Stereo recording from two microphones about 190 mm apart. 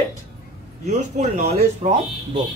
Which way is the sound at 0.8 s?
40° right (ahead or behind).